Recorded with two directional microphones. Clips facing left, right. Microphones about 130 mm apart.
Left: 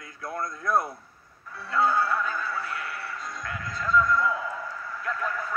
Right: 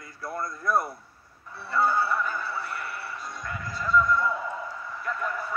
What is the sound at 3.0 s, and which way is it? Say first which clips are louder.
Music: left 1 dB; 25° right (ahead or behind).